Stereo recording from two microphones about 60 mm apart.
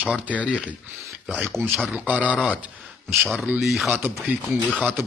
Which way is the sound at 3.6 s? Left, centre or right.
Centre.